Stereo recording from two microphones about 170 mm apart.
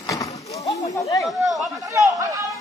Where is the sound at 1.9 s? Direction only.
20° right (ahead or behind).